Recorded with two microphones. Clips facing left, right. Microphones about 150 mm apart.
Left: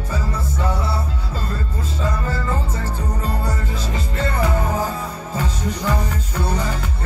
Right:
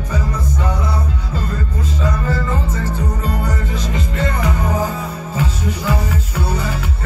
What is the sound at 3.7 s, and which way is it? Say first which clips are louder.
Music: right 3 dB; 15° right (ahead or behind).